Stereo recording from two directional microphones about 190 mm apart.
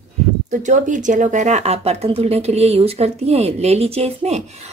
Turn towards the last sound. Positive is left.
turn(degrees=-35)  # may be behind; listen again after turning